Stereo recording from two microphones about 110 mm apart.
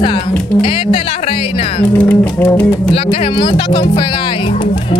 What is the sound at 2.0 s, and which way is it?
Speech, 20° left (ahead or behind).